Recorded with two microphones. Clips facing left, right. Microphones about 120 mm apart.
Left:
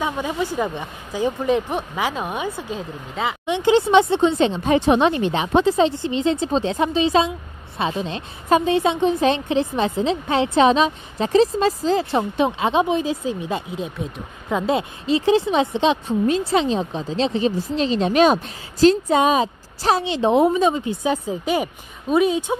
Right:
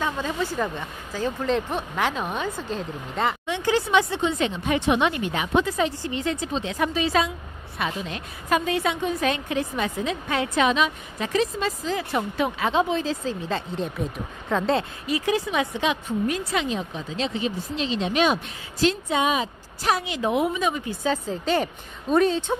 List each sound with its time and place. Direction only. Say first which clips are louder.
0.0 s a woman's voice: left 3 dB; 15° left (ahead or behind)
3.4 s a woman's voice: left 7 dB; 20° left (ahead or behind); by 14.1 s 5° left (ahead or behind)
14.5 s a woman's voice: left 2 dB; 15° left (ahead or behind)
15.0 s a woman's voice: left 9 dB; 25° left (ahead or behind); by 22.6 s 10° left (ahead or behind)